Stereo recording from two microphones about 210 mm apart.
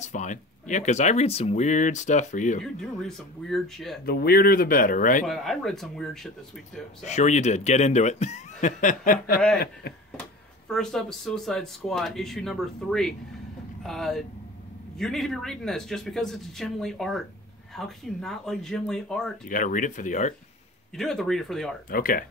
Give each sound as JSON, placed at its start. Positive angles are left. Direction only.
{"t": 0.0, "sound": "speech", "side_deg": 35}
{"t": 2.6, "sound": "speech", "side_deg": 0}
{"t": 4.0, "sound": "speech", "side_deg": 45}
{"t": 5.2, "sound": "speech", "side_deg": 0}
{"t": 7.0, "sound": "speech", "side_deg": 35}
{"t": 10.7, "sound": "speech", "side_deg": 0}
{"t": 19.4, "sound": "speech", "side_deg": 40}
{"t": 20.9, "sound": "speech", "side_deg": 0}
{"t": 21.8, "sound": "speech", "side_deg": 40}